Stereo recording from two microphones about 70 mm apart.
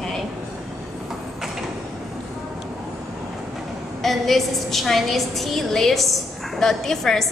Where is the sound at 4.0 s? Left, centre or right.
Centre.